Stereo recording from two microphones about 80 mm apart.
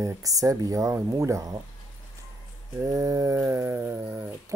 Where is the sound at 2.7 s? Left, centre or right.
Right.